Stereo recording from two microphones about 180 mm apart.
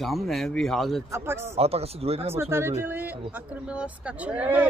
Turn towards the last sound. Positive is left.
turn(degrees=-10)  # may be behind; listen again after turning